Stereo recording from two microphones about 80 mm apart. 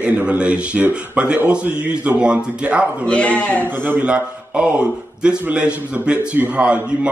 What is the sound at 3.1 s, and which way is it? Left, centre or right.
Speech, centre.